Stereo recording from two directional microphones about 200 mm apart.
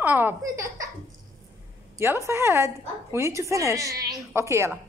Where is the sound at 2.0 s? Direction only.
15° right (ahead or behind).